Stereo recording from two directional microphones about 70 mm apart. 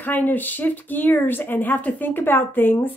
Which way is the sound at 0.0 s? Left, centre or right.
Left.